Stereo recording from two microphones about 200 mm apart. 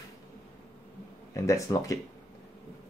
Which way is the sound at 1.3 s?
15° left (ahead or behind).